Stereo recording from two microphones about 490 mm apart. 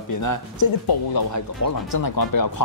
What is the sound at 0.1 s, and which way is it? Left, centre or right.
Speech, left.